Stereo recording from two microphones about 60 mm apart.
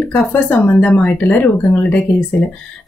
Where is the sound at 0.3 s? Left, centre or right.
Left.